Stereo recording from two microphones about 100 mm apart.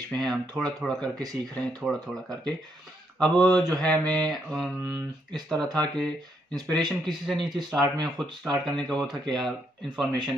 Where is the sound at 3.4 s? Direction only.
40° right (ahead or behind).